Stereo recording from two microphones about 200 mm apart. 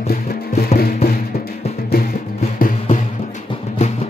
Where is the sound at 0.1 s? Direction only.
45° left (ahead or behind).